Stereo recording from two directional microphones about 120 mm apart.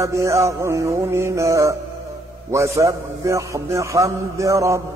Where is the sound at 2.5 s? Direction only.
25° right (ahead or behind).